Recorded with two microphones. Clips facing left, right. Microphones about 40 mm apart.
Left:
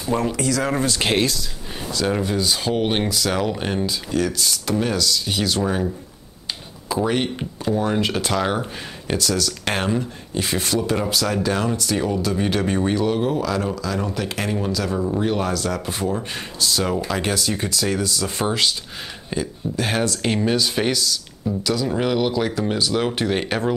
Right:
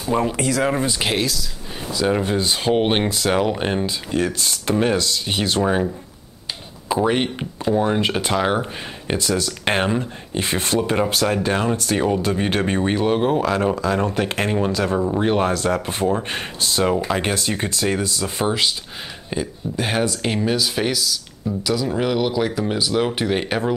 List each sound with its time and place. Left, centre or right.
0.0 s speech: right
0.7 s speech: centre
2.2 s speech: right
6.9 s speech: right
18.2 s speech: centre